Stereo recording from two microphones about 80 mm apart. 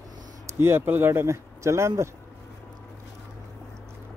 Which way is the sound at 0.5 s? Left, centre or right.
Right.